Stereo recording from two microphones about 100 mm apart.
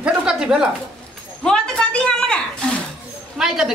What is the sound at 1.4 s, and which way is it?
Speech, 10° left (ahead or behind).